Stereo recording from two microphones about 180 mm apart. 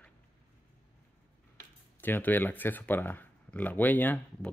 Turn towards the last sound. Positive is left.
turn(degrees=10)  # may be behind; listen again after turning